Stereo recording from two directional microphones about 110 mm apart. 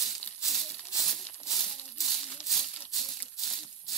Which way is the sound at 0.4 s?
Centre (ahead or behind).